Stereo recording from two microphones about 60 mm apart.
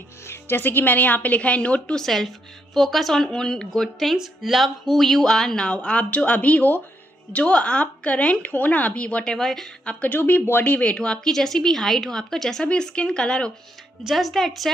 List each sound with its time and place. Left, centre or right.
0.3 s speech: left
2.0 s speech: centre
5.7 s speech: centre
9.3 s a woman's voice: centre
10.0 s a woman's voice: left; by 13.5 s centre
14.0 s speech: centre